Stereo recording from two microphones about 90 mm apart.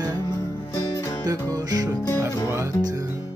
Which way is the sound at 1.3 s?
45° right (ahead or behind).